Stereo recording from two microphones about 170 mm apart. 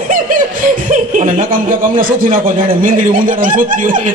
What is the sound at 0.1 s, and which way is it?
Chuckle, 55° right (ahead or behind).